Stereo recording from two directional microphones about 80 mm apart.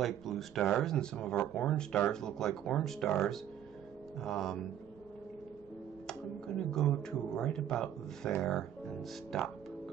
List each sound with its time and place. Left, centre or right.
0.0 s speech: centre
6.0 s a sound: centre
7.0 s speech: centre